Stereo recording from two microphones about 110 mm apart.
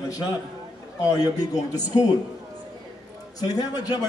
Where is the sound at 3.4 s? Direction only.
35° left (ahead or behind).